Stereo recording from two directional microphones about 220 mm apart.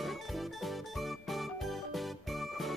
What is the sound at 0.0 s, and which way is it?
Music, centre (ahead or behind).